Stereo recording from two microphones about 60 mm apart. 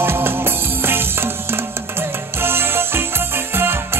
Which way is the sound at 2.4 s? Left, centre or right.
Right.